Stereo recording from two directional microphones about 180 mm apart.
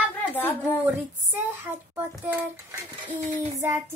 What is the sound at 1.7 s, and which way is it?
Child singing, 10° right (ahead or behind).